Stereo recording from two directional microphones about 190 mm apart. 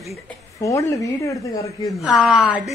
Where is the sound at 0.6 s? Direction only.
15° left (ahead or behind).